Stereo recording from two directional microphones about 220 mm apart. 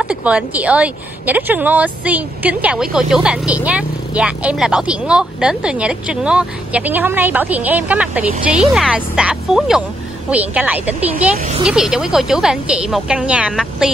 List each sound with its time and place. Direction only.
0.0 s a woman's voice: 5° right (ahead or behind)